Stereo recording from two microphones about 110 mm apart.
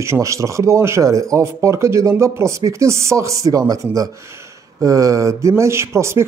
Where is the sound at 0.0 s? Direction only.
25° right (ahead or behind).